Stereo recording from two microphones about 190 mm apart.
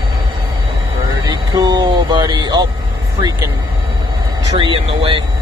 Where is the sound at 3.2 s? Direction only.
20° right (ahead or behind).